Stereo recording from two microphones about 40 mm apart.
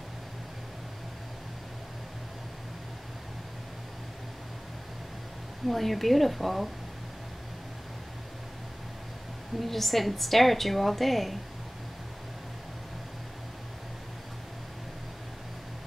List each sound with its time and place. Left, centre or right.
5.7 s a woman's voice: centre
9.6 s a woman's voice: centre